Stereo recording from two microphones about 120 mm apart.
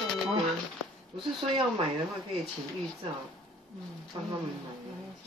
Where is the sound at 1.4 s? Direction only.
45° right (ahead or behind).